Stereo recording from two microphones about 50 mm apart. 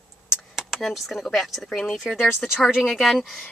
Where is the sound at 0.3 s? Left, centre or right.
Centre.